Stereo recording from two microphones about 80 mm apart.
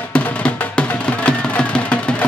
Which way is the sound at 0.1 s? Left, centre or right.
Centre.